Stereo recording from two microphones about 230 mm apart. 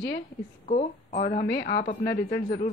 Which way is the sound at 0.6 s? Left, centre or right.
Left.